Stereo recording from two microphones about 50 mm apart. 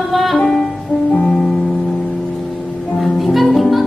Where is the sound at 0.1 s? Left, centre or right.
Centre.